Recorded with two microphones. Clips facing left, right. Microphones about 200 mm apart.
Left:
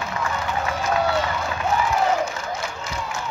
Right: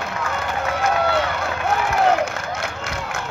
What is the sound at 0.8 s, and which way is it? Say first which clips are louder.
Crowd: right 2 dB; 65° right (ahead or behind).